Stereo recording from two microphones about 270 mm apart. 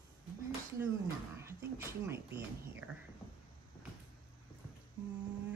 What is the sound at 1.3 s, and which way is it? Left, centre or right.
A woman's voice, centre.